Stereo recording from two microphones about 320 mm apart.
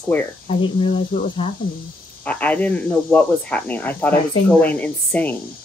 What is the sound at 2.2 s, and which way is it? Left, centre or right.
Speech, centre.